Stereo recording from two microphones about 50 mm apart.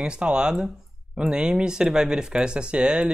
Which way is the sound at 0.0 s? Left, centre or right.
Centre.